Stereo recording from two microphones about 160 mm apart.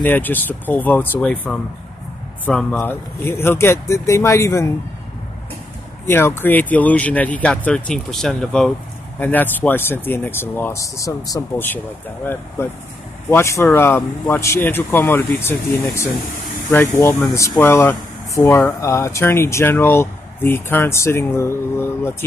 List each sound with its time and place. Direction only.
0.0 s speech: 10° left (ahead or behind)
6.0 s speech: 15° left (ahead or behind)